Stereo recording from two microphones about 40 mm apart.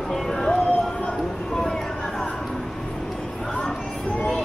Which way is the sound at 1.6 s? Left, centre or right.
Centre.